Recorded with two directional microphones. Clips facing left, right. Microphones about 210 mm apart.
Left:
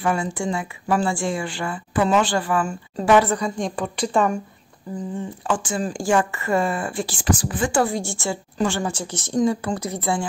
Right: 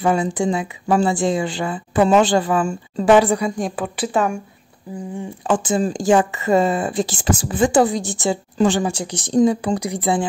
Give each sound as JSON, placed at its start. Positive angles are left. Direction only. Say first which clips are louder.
{"t": 0.0, "sound": "speech", "louder": "right 5 dB", "side_deg": -20}
{"t": 5.5, "sound": "a woman's voice", "louder": "right 6 dB", "side_deg": -25}